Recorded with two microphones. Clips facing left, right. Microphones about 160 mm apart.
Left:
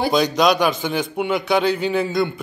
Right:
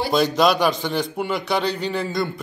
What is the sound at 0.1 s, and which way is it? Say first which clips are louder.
A man's voice: right 2 dB; centre (ahead or behind).